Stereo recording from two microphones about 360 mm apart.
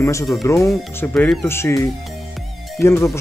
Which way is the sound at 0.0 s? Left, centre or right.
Centre.